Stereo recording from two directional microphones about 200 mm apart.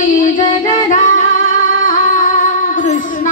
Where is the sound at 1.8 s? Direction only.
40° left (ahead or behind).